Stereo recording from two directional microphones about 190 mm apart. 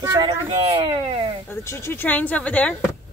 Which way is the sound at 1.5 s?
15° left (ahead or behind).